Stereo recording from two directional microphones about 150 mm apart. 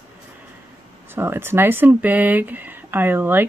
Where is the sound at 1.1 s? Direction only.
15° right (ahead or behind).